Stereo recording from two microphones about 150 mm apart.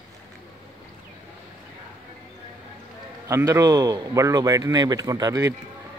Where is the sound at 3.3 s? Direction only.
20° right (ahead or behind).